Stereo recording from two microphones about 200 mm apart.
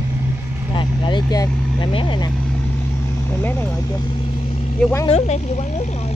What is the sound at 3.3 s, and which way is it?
Speech, 10° left (ahead or behind).